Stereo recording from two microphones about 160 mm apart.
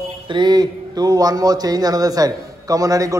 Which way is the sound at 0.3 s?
25° right (ahead or behind).